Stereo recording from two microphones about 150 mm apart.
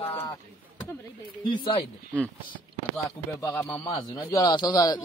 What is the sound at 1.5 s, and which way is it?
Speech, 35° left (ahead or behind).